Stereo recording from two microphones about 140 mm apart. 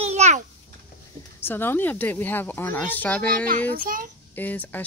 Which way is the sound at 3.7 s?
85° right.